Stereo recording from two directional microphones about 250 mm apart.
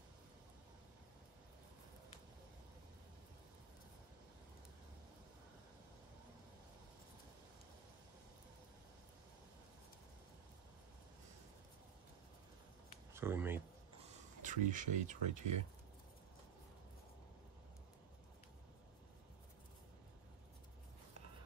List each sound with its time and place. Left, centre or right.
13.1 s speech: centre
14.4 s speech: right